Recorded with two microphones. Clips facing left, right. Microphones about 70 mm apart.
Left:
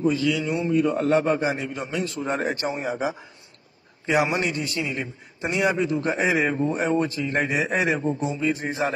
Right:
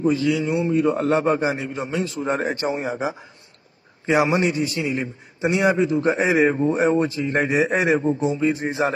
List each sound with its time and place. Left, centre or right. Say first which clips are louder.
0.0 s a man's voice: right 2 dB; right
4.1 s a man's voice: right 4 dB; centre
4.6 s a man's voice: right 4 dB; centre
5.6 s a man's voice: right 3 dB; right